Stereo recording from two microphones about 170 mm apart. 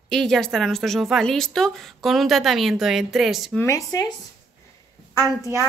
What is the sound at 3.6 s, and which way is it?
Speech, 20° left (ahead or behind).